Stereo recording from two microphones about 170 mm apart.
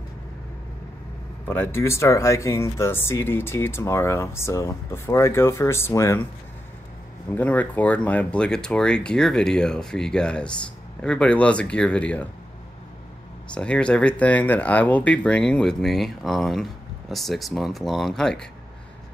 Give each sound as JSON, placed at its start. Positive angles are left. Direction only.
{"t": 1.5, "sound": "speech", "side_deg": 15}
{"t": 7.2, "sound": "speech", "side_deg": 10}
{"t": 13.6, "sound": "speech", "side_deg": 5}